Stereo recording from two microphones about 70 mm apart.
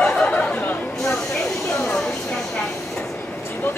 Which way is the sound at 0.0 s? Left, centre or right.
Centre.